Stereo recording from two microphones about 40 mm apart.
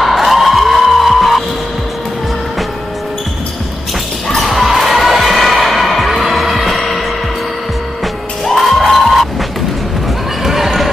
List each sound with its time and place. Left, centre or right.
0.0 s music: centre
4.4 s music: centre
8.5 s crowd: centre
10.4 s basketball bounce: centre